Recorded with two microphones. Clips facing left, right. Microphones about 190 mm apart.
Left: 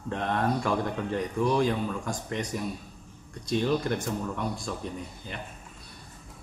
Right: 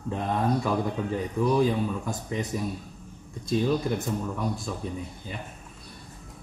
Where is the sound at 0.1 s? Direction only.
5° right (ahead or behind).